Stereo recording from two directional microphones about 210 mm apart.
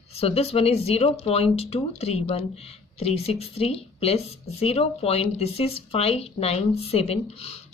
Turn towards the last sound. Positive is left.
turn(degrees=30)  # may be behind; listen again after turning